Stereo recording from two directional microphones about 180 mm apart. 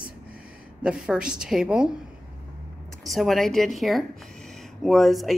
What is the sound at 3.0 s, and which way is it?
A woman's voice, centre (ahead or behind).